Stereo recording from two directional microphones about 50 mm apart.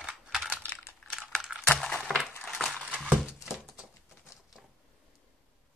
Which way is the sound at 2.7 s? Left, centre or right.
Centre.